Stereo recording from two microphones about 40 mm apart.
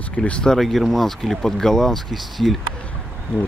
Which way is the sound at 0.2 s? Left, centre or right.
Left.